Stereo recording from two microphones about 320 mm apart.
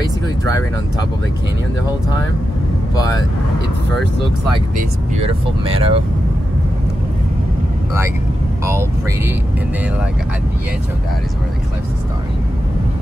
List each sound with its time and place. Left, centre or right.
4.7 s speech: centre
8.6 s speech: centre